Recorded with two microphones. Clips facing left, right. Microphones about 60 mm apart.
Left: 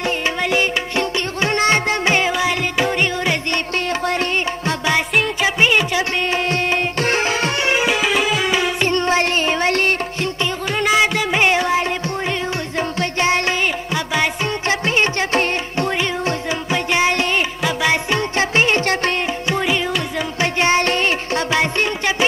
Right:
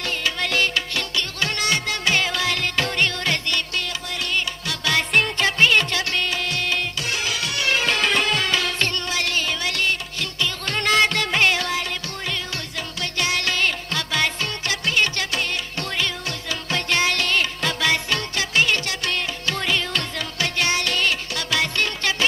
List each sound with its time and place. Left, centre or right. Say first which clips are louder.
0.0 s music: left 5 dB; left
4.0 s music: left 7 dB; left
5.1 s music: left 2 dB; centre
5.6 s music: left 2 dB; centre
6.3 s music: left 6 dB; left
7.8 s music: left 4 dB; centre
9.0 s music: left 8 dB; left
10.7 s music: left 3 dB; centre; by 13.6 s left
13.9 s music: left 4 dB; centre
14.7 s music: left 4 dB; left
19.4 s music: left 4 dB; centre